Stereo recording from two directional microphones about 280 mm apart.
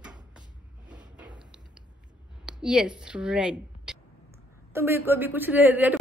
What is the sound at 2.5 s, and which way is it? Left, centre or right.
Speech, centre.